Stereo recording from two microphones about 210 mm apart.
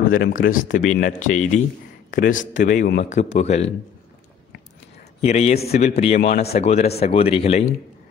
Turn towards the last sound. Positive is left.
turn(degrees=30)  # may be behind; listen again after turning